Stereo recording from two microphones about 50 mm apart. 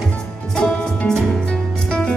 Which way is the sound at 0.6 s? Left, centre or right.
Centre.